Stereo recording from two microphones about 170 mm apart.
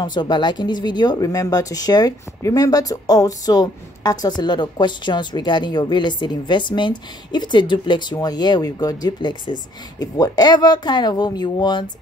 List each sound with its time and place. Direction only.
0.0 s speech: 25° left (ahead or behind)